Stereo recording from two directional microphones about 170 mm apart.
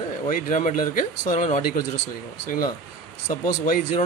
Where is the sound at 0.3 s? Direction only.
50° left (ahead or behind).